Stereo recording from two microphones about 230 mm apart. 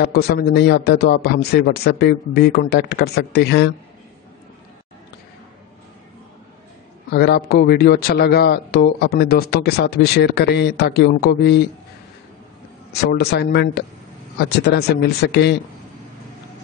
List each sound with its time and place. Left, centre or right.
0.0 s a man's voice: left
7.1 s a man's voice: left
13.1 s a man's voice: left